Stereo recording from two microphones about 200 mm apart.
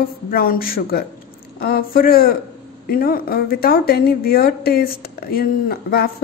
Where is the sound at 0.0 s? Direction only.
45° left (ahead or behind).